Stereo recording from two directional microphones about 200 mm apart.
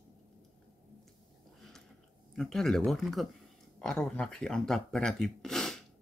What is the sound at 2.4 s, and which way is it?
Speech, centre (ahead or behind).